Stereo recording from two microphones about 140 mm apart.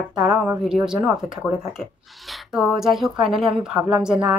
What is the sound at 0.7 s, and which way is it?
Speech, 5° right (ahead or behind).